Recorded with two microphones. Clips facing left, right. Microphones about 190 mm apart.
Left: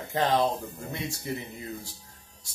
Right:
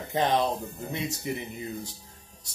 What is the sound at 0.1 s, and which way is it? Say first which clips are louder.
Speech: even; 20° right (ahead or behind).